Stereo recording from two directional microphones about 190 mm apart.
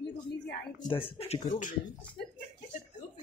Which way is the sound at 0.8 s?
25° left (ahead or behind).